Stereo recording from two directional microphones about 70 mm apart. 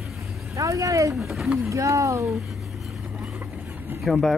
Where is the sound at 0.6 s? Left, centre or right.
Right.